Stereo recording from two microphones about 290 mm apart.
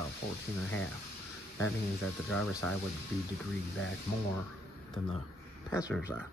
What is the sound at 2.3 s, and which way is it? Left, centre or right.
Speech, centre.